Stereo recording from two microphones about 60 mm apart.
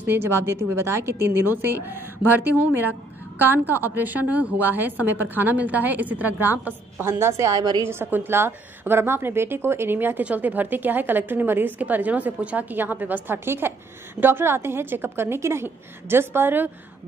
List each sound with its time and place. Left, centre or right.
0.0 s a woman's voice: right